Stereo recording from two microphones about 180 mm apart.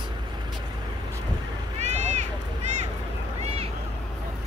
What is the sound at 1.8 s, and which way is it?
Run, 40° right (ahead or behind).